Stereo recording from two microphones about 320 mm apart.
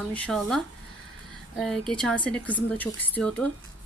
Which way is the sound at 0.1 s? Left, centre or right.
Centre.